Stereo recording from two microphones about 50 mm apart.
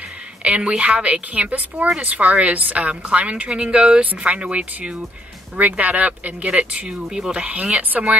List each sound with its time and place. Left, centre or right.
0.4 s a woman's voice: right
6.5 s speech: centre
7.4 s a woman's voice: right